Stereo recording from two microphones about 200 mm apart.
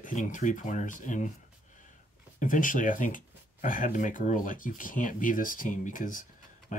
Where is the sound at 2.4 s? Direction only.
40° left (ahead or behind).